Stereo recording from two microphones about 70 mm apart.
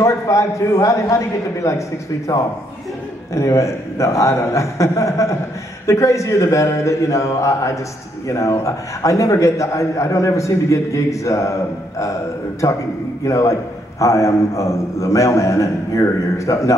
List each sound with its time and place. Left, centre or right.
0.0 s a man's voice: left
12.6 s a man's voice: left